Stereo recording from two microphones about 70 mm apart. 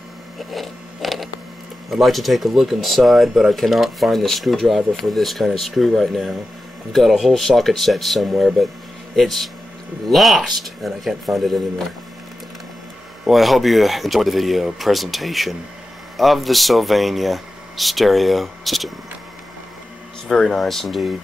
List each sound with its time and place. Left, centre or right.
0.4 s a sound: centre
1.9 s speech: centre
13.3 s speech: centre
20.2 s speech: centre